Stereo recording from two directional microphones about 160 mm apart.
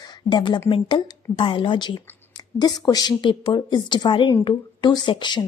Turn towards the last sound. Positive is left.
turn(degrees=30)  # may be behind; listen again after turning